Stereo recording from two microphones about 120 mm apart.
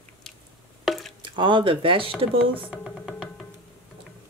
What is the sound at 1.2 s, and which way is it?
Speech, 45° right (ahead or behind).